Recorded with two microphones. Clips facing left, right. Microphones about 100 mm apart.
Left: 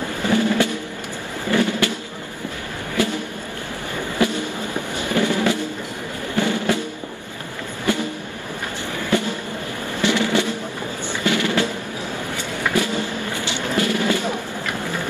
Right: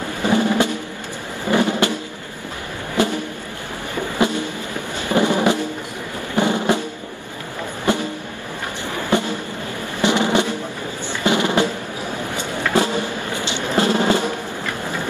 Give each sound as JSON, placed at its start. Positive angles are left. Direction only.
{"t": 0.2, "sound": "drum", "side_deg": -20}
{"t": 3.0, "sound": "a sound", "side_deg": -20}
{"t": 4.2, "sound": "a sound", "side_deg": -20}
{"t": 5.1, "sound": "drum", "side_deg": -20}
{"t": 7.8, "sound": "music", "side_deg": -20}
{"t": 9.1, "sound": "music", "side_deg": -20}
{"t": 10.0, "sound": "drum", "side_deg": -20}
{"t": 12.7, "sound": "music", "side_deg": -20}